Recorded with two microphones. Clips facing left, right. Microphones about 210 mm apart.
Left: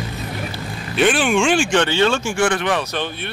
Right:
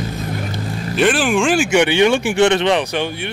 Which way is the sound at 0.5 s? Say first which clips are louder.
Right 2 dB; centre (ahead or behind).